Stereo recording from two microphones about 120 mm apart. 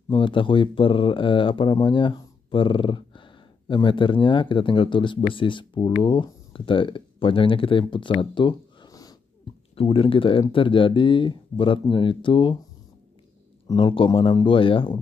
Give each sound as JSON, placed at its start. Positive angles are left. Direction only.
{"t": 0.1, "sound": "speech", "side_deg": 45}
{"t": 9.8, "sound": "speech", "side_deg": 50}
{"t": 13.7, "sound": "speech", "side_deg": 45}